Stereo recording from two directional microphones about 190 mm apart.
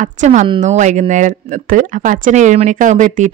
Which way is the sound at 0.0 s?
40° right (ahead or behind).